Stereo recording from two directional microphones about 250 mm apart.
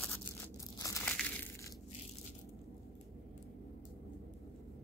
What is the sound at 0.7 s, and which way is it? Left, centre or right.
Crushing, centre.